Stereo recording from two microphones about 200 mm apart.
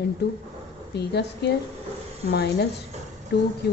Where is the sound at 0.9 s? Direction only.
55° left (ahead or behind).